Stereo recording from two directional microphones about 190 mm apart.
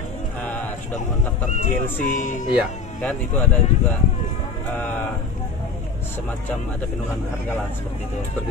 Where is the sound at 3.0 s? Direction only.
10° left (ahead or behind).